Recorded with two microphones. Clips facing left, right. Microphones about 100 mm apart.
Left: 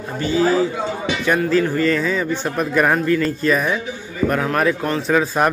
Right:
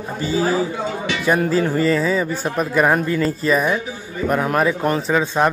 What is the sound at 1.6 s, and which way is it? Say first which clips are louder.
A man's voice: even; 15° right (ahead or behind).